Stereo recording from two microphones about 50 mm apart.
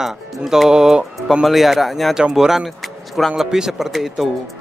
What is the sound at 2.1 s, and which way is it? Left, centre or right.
Speech, centre.